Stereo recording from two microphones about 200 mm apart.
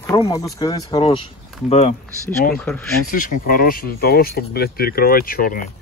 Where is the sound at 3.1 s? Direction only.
45° left (ahead or behind).